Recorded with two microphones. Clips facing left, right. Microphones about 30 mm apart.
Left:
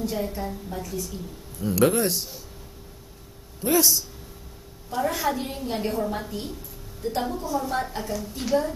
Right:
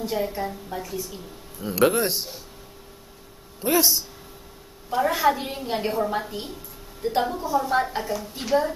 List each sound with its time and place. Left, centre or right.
0.0 s a woman's voice: centre
3.6 s a woman's voice: centre